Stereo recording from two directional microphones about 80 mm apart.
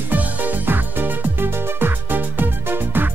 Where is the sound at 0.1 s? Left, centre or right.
Right.